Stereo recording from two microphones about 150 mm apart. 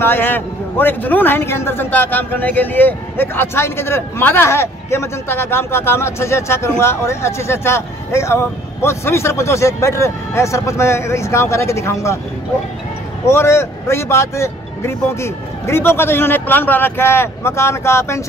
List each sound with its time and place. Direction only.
0.0 s a man's voice: 15° left (ahead or behind)
13.3 s a man's voice: 15° left (ahead or behind)